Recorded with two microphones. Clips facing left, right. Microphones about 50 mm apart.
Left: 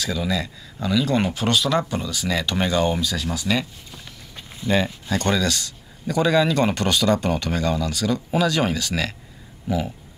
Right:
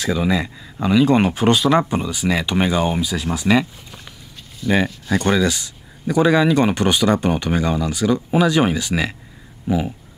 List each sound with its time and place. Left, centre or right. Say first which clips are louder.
0.0 s speech: right 5 dB; right
3.3 s speech: right 8 dB; right
4.6 s speech: right 3 dB; centre